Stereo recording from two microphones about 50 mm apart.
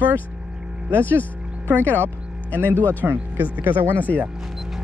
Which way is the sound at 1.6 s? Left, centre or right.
Right.